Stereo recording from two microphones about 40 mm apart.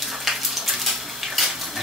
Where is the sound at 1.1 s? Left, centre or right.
Centre.